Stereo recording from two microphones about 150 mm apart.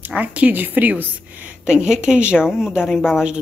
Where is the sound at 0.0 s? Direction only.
10° right (ahead or behind).